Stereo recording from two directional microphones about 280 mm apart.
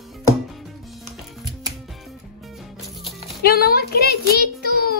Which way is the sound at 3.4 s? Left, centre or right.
Left.